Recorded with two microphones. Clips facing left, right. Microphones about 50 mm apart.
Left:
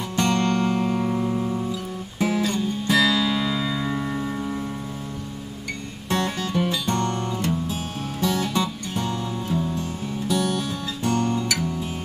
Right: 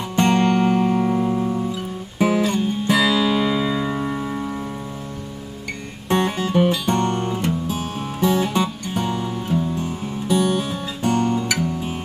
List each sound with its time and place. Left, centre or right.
0.1 s music: right; by 1.6 s centre
2.1 s music: right
6.0 s music: right